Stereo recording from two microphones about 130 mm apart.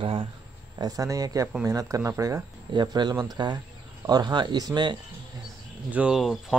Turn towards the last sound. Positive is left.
turn(degrees=-5)  # may be behind; listen again after turning